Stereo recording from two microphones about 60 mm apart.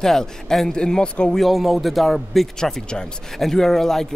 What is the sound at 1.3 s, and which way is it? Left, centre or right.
Speech, centre.